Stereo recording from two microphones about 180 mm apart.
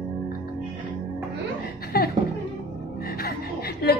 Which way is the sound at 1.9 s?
60° left (ahead or behind).